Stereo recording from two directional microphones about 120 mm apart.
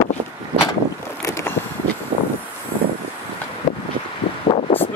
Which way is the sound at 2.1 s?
65° right (ahead or behind).